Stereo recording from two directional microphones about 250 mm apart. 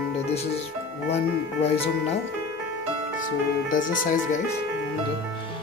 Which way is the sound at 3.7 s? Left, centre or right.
Left.